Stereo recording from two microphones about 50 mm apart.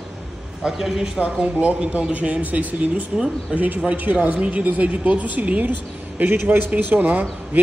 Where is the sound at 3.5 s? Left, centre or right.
Right.